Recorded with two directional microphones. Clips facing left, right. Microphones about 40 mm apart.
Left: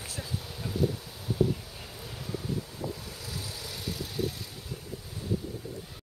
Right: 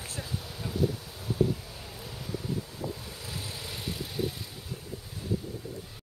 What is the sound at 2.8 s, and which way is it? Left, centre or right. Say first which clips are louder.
Vehicle: even; right.